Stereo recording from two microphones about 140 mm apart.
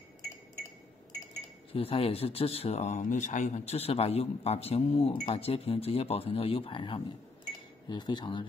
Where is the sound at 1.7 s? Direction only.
45° left (ahead or behind).